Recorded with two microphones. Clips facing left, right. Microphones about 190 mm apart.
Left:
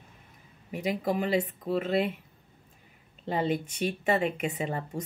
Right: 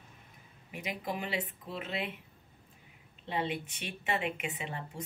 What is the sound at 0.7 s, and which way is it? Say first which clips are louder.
Speech: left 9 dB; 40° left (ahead or behind).